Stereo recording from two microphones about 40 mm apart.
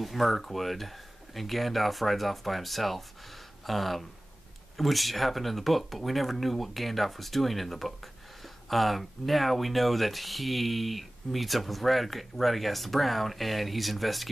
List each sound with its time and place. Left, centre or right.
0.0 s speech: centre